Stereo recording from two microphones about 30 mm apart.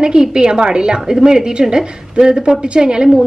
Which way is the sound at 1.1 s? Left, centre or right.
Centre.